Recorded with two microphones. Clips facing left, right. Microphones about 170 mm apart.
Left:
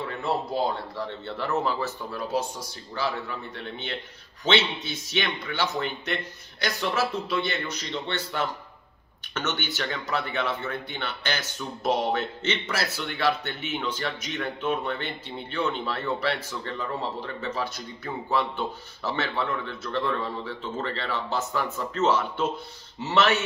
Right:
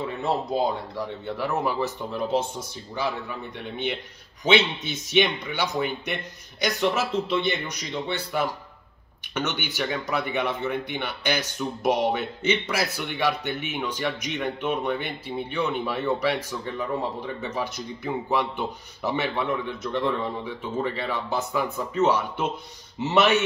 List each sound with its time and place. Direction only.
0.2 s speech: 15° right (ahead or behind)